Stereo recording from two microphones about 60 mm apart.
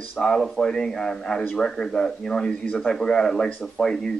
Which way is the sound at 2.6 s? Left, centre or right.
Left.